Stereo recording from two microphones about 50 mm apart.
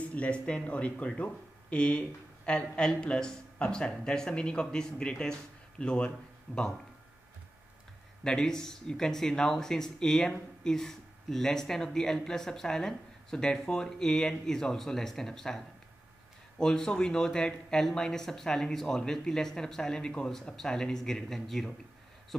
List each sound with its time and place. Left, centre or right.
0.0 s speech: left
8.2 s speech: centre